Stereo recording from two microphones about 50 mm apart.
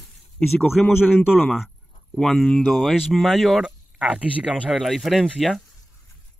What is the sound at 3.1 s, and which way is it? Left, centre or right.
Speech, centre.